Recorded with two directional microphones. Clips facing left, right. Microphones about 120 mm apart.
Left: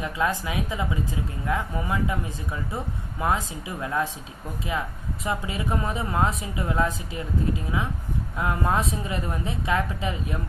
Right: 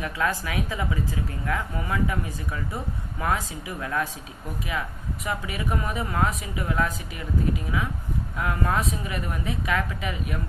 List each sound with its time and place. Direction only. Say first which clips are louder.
0.0 s a woman's voice: left 1 dB; 20° left (ahead or behind)